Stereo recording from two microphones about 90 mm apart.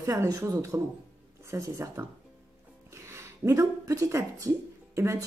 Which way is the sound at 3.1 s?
30° right (ahead or behind).